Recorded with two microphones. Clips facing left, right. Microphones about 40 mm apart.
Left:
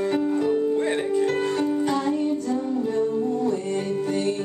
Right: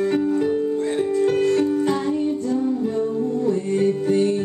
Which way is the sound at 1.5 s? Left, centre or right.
Centre.